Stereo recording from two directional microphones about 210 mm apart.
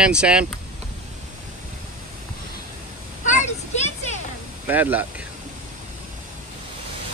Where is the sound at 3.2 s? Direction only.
35° left (ahead or behind).